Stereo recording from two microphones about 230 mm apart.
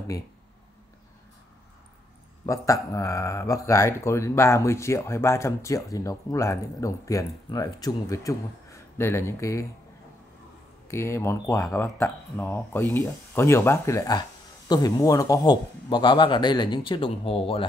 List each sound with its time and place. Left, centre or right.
2.4 s speech: centre
10.9 s speech: centre